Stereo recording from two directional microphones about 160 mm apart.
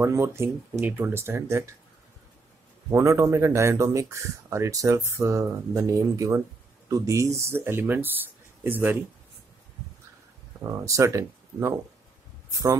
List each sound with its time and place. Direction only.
0.0 s speech: 15° right (ahead or behind)
2.9 s speech: 20° right (ahead or behind)
10.6 s speech: 20° right (ahead or behind)
12.4 s a sound: 20° right (ahead or behind)